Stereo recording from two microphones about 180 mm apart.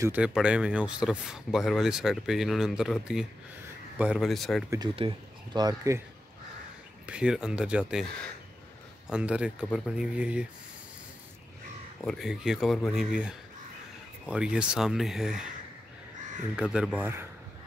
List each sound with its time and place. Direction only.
0.0 s speech: 5° right (ahead or behind)
4.9 s speech: 25° right (ahead or behind)
7.1 s speech: 5° right (ahead or behind)
9.1 s speech: 5° right (ahead or behind)
12.0 s speech: centre (ahead or behind)
16.5 s speech: 5° right (ahead or behind)